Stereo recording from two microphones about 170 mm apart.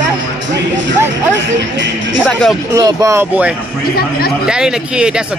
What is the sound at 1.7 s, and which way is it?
Speech, 90° right.